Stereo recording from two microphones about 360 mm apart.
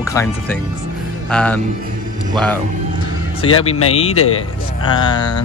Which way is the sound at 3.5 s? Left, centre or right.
Left.